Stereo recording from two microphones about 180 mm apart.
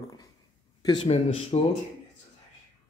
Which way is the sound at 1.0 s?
35° left (ahead or behind).